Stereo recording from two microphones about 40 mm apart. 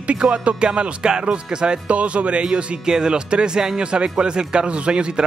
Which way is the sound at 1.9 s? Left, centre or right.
Right.